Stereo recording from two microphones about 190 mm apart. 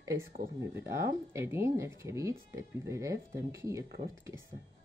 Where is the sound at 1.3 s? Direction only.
15° right (ahead or behind).